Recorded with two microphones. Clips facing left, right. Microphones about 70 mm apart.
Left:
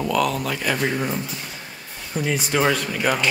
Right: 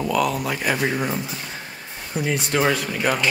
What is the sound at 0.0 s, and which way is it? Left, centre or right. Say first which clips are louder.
Speech: even; centre.